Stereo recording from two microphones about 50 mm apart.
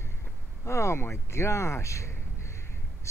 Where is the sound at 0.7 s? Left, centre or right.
Left.